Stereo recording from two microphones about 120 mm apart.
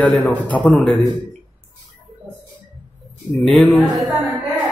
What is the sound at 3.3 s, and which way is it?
A woman's voice, centre (ahead or behind).